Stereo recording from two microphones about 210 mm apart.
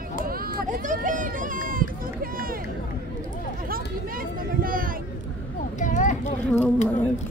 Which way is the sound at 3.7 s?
45° right (ahead or behind).